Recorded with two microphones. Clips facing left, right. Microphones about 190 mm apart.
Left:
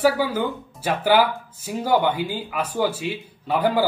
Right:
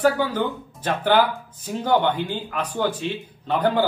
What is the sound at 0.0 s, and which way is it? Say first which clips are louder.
A man's voice: even; 10° left (ahead or behind).